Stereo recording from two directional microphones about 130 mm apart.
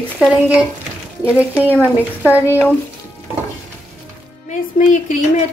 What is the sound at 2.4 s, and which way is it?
Speech, 20° left (ahead or behind).